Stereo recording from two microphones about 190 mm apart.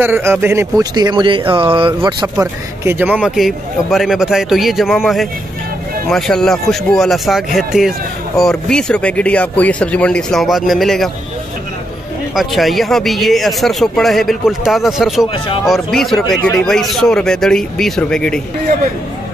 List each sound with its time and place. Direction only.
0.0 s speech: 10° right (ahead or behind)
12.4 s speech: centre (ahead or behind)
15.2 s speech: 25° left (ahead or behind)
15.6 s speech: centre (ahead or behind)